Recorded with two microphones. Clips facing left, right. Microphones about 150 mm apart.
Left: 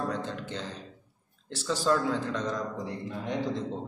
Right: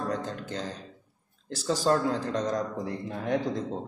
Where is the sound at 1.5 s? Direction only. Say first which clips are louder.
Right 2 dB; 40° right (ahead or behind).